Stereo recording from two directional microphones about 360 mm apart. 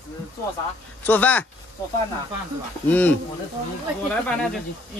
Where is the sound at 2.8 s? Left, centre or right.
Centre.